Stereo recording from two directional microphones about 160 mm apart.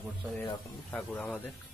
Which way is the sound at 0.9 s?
10° left (ahead or behind).